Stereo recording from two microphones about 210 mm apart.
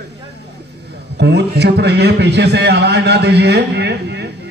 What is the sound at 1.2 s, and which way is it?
A man's voice, 55° right (ahead or behind).